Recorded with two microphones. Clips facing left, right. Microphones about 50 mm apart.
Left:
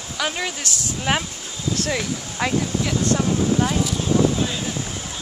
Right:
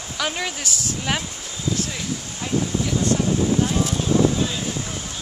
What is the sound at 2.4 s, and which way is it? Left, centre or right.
Speech, left.